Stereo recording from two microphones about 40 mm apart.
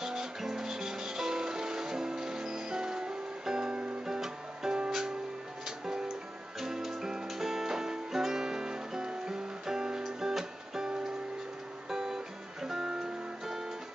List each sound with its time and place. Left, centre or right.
0.0 s music: centre
4.0 s music: centre